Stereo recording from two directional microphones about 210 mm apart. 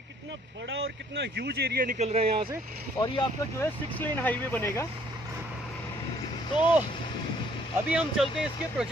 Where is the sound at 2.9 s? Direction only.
20° left (ahead or behind).